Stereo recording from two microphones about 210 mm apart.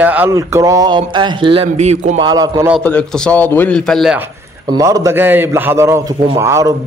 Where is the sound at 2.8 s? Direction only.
5° left (ahead or behind).